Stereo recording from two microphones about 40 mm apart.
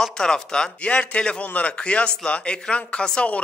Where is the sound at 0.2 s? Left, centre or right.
Centre; by 1.8 s left.